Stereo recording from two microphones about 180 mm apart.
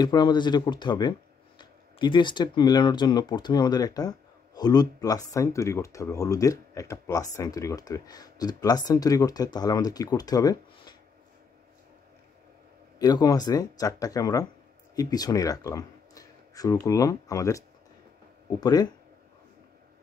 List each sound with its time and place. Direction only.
0.0 s speech: 25° left (ahead or behind)
13.0 s speech: 20° left (ahead or behind)